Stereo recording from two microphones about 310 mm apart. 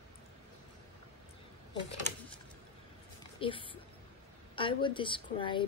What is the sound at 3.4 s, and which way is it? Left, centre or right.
A woman's voice, centre.